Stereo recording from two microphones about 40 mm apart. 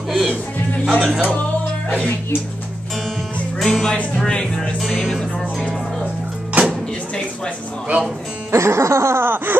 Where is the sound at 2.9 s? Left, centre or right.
Centre.